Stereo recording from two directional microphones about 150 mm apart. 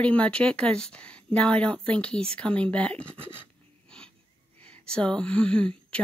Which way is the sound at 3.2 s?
15° right (ahead or behind).